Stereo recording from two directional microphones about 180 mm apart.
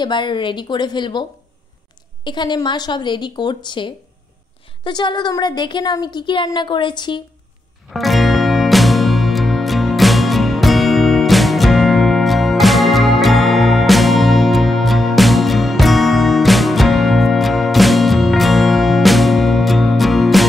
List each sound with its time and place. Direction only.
0.0 s a woman's voice: 25° left (ahead or behind)
2.2 s a woman's voice: 25° left (ahead or behind)
7.9 s music: centre (ahead or behind)